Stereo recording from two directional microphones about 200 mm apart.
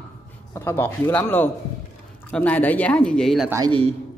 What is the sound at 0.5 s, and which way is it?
Speech, 10° left (ahead or behind).